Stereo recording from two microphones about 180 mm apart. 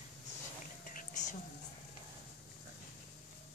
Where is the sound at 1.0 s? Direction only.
45° left (ahead or behind).